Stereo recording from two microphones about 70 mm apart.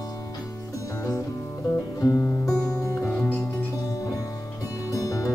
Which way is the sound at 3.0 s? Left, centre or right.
Centre.